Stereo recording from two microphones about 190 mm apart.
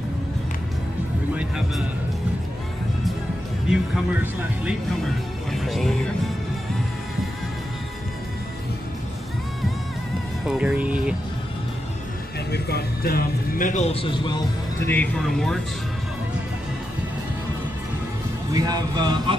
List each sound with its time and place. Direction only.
1.3 s music: 5° right (ahead or behind)
3.9 s speech: 10° right (ahead or behind)
5.5 s music: centre (ahead or behind)
10.4 s music: 5° right (ahead or behind)
12.4 s speech: 60° left (ahead or behind); by 14.4 s 25° left (ahead or behind)
14.9 s music: 5° left (ahead or behind)
18.5 s speech: 20° right (ahead or behind)